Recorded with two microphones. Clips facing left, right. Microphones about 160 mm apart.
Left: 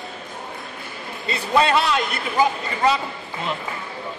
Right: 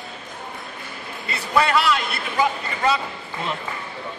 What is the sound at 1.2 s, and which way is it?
Speech, 25° left (ahead or behind).